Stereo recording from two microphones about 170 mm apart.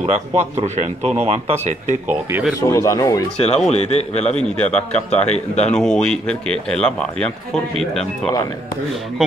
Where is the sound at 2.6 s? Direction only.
20° left (ahead or behind).